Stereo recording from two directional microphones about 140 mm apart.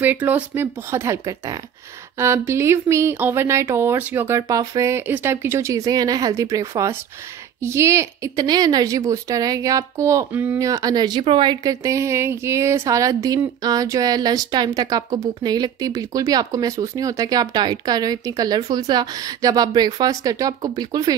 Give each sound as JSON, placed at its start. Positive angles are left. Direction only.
{"t": 0.0, "sound": "speech", "side_deg": -15}
{"t": 10.6, "sound": "speech", "side_deg": -25}